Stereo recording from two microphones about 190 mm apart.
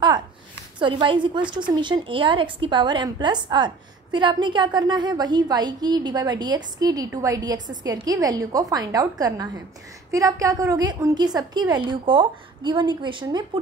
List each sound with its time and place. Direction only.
0.7 s a woman's voice: 25° right (ahead or behind)